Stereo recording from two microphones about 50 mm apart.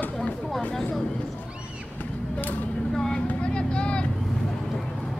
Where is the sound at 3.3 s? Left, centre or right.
Left.